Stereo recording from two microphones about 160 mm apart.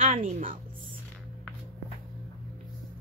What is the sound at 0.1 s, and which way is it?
Speech, 55° right (ahead or behind).